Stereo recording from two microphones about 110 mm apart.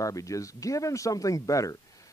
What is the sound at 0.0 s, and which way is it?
Speech, 30° left (ahead or behind).